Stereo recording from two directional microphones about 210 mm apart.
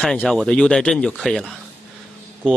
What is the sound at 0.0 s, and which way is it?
A man's voice, centre (ahead or behind).